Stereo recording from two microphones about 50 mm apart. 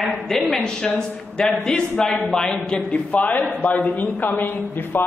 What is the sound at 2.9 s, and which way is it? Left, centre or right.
A woman's voice, left.